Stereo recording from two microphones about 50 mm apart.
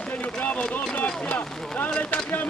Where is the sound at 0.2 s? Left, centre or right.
Left.